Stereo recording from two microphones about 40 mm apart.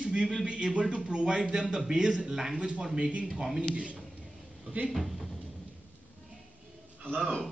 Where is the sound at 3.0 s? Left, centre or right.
Right.